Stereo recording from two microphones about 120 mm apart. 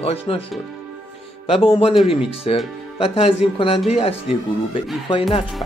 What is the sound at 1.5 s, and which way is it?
Speech, 50° left (ahead or behind).